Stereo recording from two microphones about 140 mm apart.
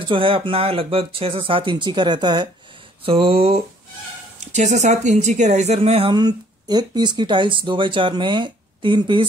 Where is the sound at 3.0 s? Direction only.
40° right (ahead or behind).